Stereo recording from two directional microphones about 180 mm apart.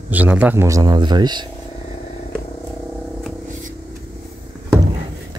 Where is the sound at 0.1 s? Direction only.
10° right (ahead or behind); by 1.5 s 25° right (ahead or behind).